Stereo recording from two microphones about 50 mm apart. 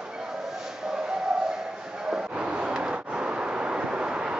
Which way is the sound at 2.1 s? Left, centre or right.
Centre.